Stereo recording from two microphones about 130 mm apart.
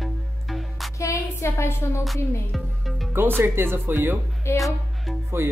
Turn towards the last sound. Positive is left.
turn(degrees=-20)  # may be behind; listen again after turning